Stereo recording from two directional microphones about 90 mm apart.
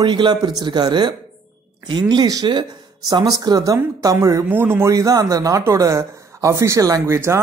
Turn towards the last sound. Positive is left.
turn(degrees=-35)  # may be behind; listen again after turning